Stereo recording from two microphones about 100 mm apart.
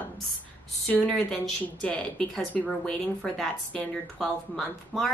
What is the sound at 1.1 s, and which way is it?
Speech, 5° left (ahead or behind).